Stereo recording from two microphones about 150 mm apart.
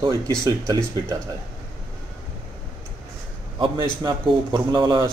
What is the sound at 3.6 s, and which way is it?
A man's voice, 25° right (ahead or behind).